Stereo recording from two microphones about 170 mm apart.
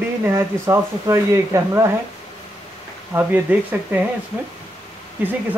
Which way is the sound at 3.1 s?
10° right (ahead or behind).